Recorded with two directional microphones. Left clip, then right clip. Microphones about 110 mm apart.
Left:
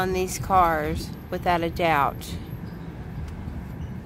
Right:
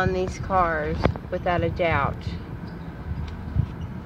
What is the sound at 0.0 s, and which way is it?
Speech, 65° left (ahead or behind).